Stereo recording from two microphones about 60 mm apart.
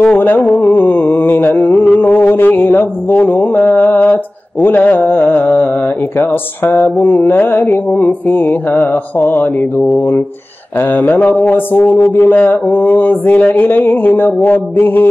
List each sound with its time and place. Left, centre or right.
0.0 s a sound: left
3.6 s mantra: left
6.1 s music: left